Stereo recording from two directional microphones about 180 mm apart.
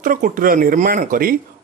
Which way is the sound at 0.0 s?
50° right (ahead or behind).